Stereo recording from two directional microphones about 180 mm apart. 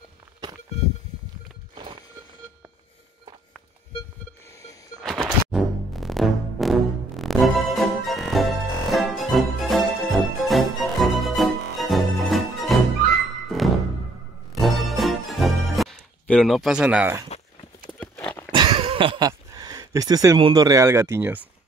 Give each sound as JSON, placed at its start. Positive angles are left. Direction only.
{"t": 5.0, "sound": "music", "side_deg": 0}
{"t": 17.9, "sound": "horse", "side_deg": 10}
{"t": 18.5, "sound": "a sound", "side_deg": -30}